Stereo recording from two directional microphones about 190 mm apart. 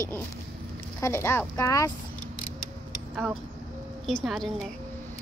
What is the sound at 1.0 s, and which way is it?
Speech, 10° left (ahead or behind).